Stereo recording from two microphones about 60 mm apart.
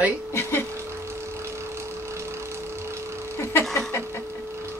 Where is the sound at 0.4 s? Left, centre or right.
Left.